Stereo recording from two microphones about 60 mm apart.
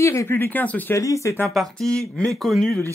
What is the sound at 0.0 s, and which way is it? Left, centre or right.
Speech, left.